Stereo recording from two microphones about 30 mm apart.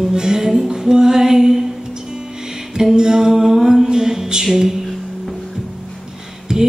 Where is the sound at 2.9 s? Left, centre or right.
Right.